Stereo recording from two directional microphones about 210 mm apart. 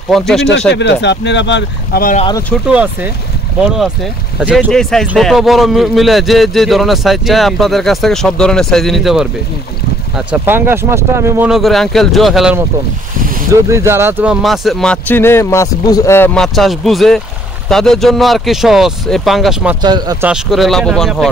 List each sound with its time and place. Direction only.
0.1 s a man's voice: centre (ahead or behind)
0.7 s speech: 55° left (ahead or behind)
2.6 s a man's voice: 5° right (ahead or behind)
13.7 s a man's voice: 15° right (ahead or behind); by 16.4 s 10° left (ahead or behind)
16.5 s a man's voice: centre (ahead or behind)
19.8 s speech: 20° right (ahead or behind)
20.2 s a man's voice: centre (ahead or behind)